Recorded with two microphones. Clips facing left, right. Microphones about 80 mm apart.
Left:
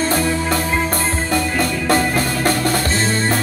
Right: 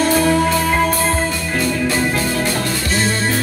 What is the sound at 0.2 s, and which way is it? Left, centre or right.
Music, right.